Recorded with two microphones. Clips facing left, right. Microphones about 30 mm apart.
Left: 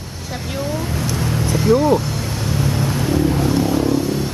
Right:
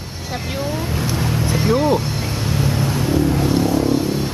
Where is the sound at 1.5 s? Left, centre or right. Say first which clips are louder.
Left 3 dB; right.